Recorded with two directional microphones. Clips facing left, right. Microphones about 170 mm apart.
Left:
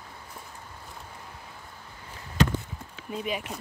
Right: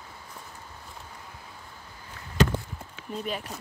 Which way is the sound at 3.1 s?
10° left (ahead or behind).